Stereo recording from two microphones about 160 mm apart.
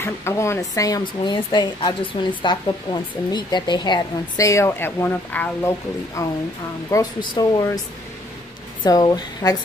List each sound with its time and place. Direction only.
0.0 s a woman's voice: 15° left (ahead or behind)
8.8 s a woman's voice: 25° left (ahead or behind)